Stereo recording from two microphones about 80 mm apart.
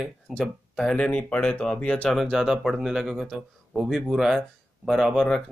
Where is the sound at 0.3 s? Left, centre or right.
Centre.